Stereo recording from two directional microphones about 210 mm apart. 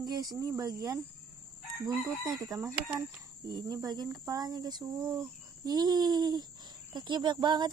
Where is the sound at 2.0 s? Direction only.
Centre (ahead or behind).